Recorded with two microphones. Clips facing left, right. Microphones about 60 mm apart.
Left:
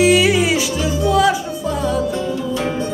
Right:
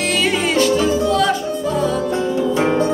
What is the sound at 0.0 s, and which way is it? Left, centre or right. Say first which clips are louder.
Music: left 5 dB; centre.